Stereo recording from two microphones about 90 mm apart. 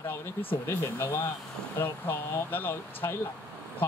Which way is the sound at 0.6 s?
25° left (ahead or behind).